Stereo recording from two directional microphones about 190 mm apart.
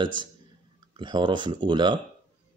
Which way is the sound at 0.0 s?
25° right (ahead or behind).